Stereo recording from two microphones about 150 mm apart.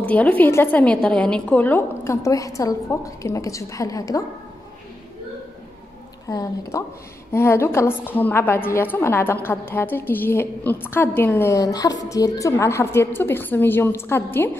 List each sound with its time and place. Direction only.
0.0 s a woman's voice: 10° left (ahead or behind)
6.2 s a woman's voice: 20° left (ahead or behind)